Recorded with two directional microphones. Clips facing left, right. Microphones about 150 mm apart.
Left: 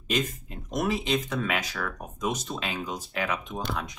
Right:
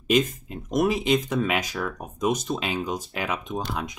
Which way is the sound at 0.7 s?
15° right (ahead or behind).